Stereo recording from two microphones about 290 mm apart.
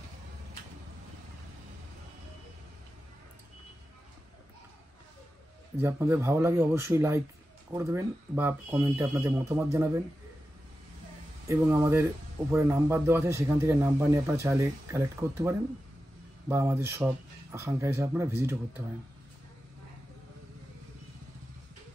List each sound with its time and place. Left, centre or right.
5.8 s a man's voice: centre
11.4 s a man's voice: centre